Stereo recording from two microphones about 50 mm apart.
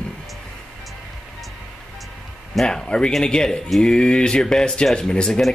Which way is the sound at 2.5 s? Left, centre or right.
Centre.